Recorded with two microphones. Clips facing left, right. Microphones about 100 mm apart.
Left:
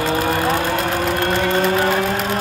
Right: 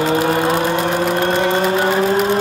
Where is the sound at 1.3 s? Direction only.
20° right (ahead or behind).